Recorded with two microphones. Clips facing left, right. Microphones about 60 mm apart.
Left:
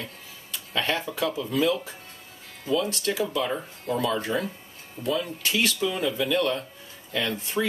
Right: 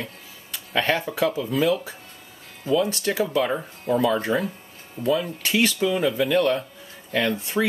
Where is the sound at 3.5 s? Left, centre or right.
Centre.